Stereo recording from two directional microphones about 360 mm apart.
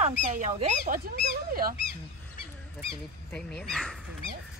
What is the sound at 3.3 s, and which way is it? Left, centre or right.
Speech, centre.